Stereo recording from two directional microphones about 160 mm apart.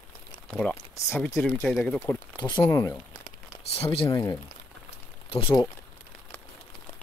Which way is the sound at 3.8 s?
35° left (ahead or behind).